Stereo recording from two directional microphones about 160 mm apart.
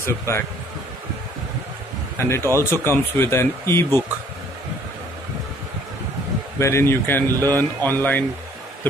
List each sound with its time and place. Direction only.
0.0 s speech: 15° left (ahead or behind)
2.1 s speech: 15° left (ahead or behind)
6.6 s speech: 15° left (ahead or behind)
7.3 s speech: 20° right (ahead or behind)
7.8 s speech: 10° left (ahead or behind)